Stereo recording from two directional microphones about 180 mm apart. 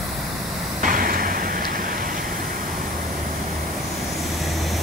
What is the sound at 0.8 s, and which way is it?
Vehicle, 50° right (ahead or behind).